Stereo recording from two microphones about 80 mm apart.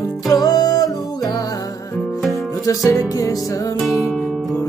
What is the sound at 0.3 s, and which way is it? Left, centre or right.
Music, left.